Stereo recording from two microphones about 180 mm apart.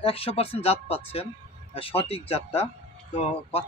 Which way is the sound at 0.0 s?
30° left (ahead or behind).